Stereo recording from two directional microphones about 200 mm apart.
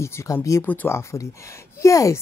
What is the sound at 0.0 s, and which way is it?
Speech, 15° left (ahead or behind).